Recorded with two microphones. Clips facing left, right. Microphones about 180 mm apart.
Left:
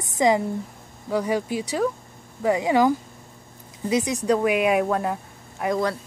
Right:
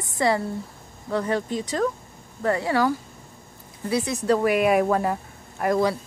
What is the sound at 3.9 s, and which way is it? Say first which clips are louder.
Speech: left 2 dB; 15° left (ahead or behind).